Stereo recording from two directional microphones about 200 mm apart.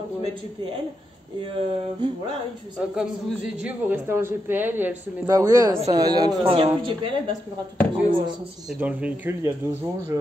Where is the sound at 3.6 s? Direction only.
10° right (ahead or behind); by 8.3 s 25° right (ahead or behind).